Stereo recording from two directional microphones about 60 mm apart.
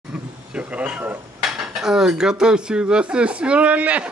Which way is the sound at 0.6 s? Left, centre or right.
Right.